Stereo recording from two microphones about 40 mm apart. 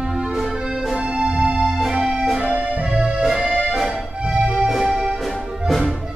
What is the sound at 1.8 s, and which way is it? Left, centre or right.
Music, centre.